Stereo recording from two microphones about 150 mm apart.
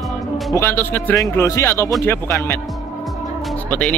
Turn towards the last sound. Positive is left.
turn(degrees=5)  # may be behind; listen again after turning